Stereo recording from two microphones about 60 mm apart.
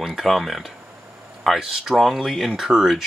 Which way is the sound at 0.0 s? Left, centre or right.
Centre.